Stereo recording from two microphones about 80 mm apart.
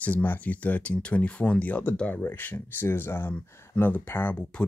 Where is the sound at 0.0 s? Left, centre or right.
Left.